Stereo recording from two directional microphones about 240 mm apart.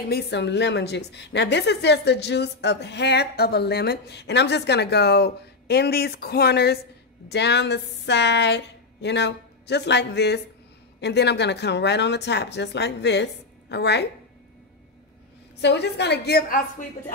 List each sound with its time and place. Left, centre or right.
0.1 s a woman's voice: left
15.6 s a woman's voice: left